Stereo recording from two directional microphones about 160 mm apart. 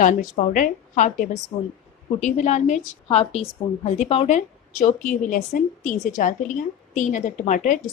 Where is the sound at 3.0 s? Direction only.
35° left (ahead or behind).